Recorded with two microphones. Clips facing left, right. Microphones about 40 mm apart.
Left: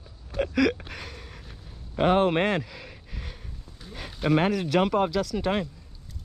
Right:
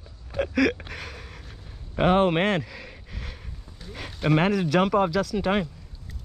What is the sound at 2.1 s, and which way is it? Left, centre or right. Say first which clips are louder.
Speech: right 1 dB; centre.